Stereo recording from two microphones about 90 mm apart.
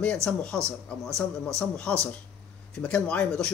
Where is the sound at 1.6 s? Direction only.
10° left (ahead or behind).